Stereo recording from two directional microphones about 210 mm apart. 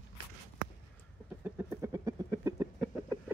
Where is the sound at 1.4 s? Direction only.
15° right (ahead or behind).